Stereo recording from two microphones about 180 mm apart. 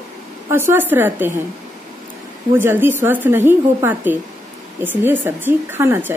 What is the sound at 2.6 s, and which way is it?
A woman's voice, 10° right (ahead or behind).